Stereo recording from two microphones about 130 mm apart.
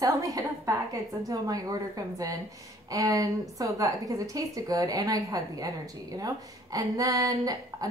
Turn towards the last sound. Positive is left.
turn(degrees=-30)  # may be behind; listen again after turning